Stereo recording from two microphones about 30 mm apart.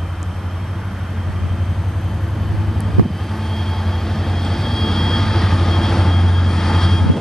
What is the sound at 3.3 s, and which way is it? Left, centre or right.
Vehicle, centre.